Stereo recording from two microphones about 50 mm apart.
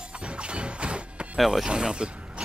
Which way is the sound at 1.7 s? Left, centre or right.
Centre.